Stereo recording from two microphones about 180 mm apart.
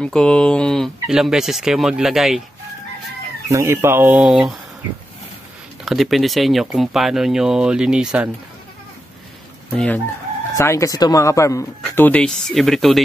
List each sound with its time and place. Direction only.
0.0 s speech: 5° left (ahead or behind)
3.4 s speech: 15° right (ahead or behind)
4.2 s speech: centre (ahead or behind)
5.9 s speech: centre (ahead or behind)
9.8 s speech: 10° left (ahead or behind)